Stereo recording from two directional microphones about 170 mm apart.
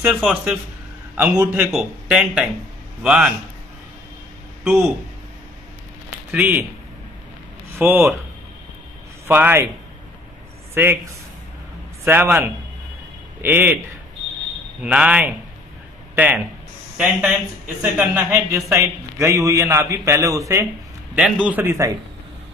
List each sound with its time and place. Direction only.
0.0 s speech: centre (ahead or behind)
4.6 s speech: 5° right (ahead or behind)
6.3 s a man's voice: 10° right (ahead or behind)
7.8 s a man's voice: 10° right (ahead or behind)
9.3 s a man's voice: 10° right (ahead or behind)
10.7 s a man's voice: 15° right (ahead or behind)
12.0 s a man's voice: 10° right (ahead or behind)
21.1 s a man's voice: 5° right (ahead or behind)